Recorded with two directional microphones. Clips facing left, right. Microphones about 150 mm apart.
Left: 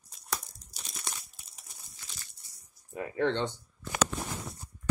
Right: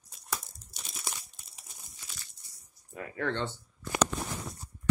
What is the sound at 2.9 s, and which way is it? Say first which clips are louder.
Speech: left 4 dB; 25° left (ahead or behind).